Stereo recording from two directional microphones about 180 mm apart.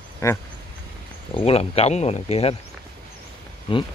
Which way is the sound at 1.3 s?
35° left (ahead or behind).